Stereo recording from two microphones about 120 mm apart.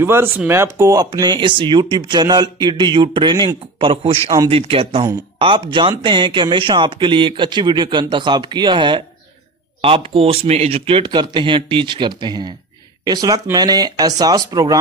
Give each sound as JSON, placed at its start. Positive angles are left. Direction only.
{"t": 0.0, "sound": "speech", "side_deg": -20}